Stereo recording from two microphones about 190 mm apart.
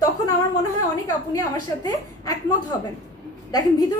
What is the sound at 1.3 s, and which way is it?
A woman's voice, 20° left (ahead or behind).